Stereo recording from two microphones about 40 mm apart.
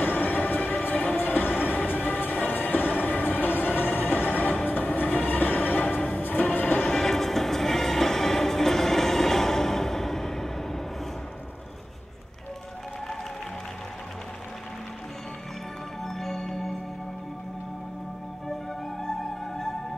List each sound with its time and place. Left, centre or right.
0.0 s music: left
1.7 s train: left
4.6 s music: left
6.8 s music: centre
16.0 s music: centre
18.9 s music: centre